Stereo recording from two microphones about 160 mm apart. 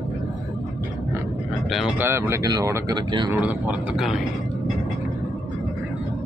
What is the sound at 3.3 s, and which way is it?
Speech, 10° right (ahead or behind).